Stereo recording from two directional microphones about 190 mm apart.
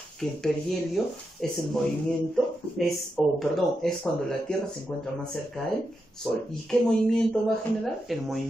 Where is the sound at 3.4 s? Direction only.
Centre (ahead or behind).